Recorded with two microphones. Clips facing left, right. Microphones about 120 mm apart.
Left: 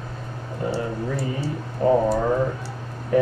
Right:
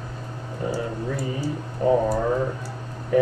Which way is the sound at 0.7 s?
30° left (ahead or behind).